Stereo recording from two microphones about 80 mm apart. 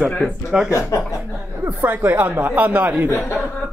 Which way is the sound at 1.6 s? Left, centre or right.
Right.